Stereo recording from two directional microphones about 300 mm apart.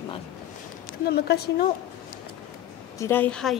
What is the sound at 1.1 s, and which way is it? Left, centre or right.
Speech, left.